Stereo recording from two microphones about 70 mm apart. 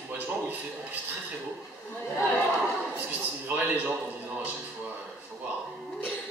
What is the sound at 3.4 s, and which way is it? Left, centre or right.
Speech, right.